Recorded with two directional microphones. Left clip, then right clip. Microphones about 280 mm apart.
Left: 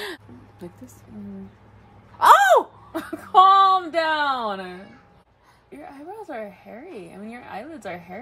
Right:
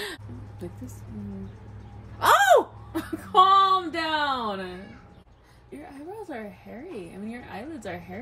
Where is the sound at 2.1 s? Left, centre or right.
Centre.